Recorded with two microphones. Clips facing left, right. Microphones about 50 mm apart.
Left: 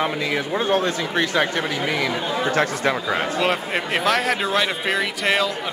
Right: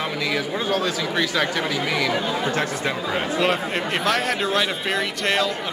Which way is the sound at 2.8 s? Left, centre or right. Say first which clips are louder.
Left 3 dB; centre.